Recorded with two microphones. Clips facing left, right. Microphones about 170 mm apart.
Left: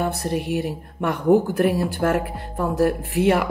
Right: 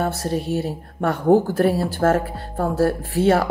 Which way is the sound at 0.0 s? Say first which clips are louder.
Right 1 dB; 15° left (ahead or behind).